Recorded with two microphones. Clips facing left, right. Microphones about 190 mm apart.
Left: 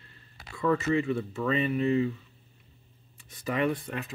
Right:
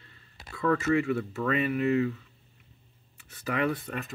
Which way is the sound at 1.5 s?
25° left (ahead or behind).